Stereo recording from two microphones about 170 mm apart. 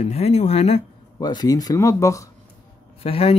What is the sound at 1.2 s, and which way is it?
Speech, 25° left (ahead or behind).